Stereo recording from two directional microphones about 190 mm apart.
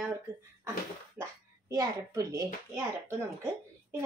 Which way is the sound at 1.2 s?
15° right (ahead or behind).